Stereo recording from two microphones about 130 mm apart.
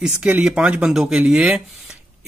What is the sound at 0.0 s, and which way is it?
Speech, 10° right (ahead or behind).